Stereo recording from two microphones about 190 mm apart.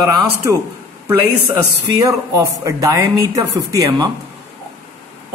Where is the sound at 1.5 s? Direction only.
15° right (ahead or behind).